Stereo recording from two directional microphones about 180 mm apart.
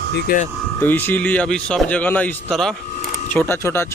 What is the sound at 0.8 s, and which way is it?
Speech, 10° left (ahead or behind).